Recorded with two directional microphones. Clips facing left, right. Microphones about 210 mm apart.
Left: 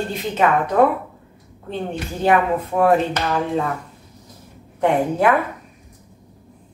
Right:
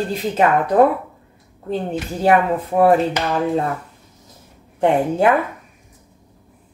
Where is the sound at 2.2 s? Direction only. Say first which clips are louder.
Right 1 dB; 35° right (ahead or behind).